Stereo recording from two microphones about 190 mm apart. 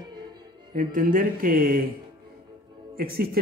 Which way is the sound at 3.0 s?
50° right (ahead or behind).